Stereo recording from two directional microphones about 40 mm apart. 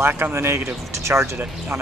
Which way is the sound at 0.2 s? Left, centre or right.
Right.